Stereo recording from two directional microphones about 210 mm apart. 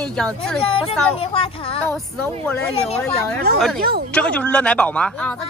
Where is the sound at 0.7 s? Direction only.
25° left (ahead or behind).